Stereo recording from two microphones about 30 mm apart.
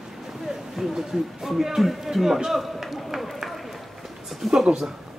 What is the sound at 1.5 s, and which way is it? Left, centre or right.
Speech, centre.